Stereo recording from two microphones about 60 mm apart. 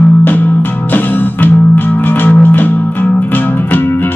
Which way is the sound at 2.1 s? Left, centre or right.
Left.